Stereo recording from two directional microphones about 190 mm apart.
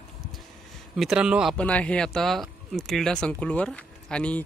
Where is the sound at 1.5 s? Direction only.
5° left (ahead or behind).